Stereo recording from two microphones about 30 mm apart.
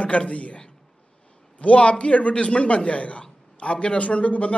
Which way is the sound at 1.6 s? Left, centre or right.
Left.